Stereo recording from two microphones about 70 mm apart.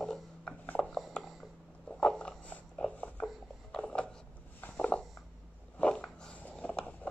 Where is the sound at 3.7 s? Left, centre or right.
Centre.